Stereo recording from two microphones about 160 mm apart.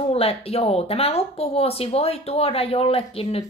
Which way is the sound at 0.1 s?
40° left (ahead or behind).